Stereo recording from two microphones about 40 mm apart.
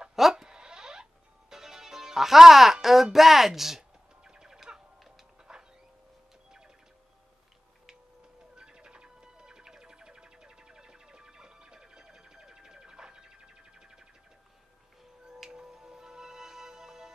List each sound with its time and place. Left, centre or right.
0.1 s sheep: centre
1.5 s a child's voice: centre
4.2 s music: centre
5.5 s a sound: centre
8.5 s music: right
15.5 s music: centre